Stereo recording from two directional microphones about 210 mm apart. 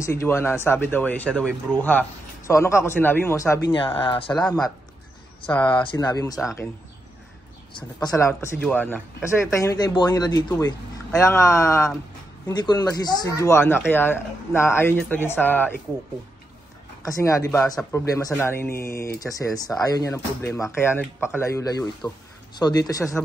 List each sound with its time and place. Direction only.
0.0 s speech: 15° left (ahead or behind)
3.7 s speech: 25° left (ahead or behind)
4.3 s speech: 5° left (ahead or behind)
5.6 s speech: 20° left (ahead or behind)
6.3 s speech: centre (ahead or behind)
8.0 s speech: 15° left (ahead or behind)
17.0 s speech: 15° left (ahead or behind)